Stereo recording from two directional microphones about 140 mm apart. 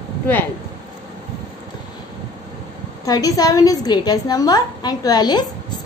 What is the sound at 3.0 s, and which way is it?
A woman's voice, 25° left (ahead or behind).